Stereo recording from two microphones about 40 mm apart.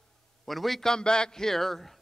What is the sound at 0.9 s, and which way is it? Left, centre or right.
A man's voice, centre.